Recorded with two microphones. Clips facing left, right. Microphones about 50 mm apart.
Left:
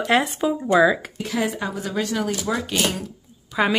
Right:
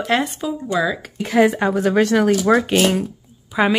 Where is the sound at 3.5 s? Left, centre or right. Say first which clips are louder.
Right 3 dB; centre.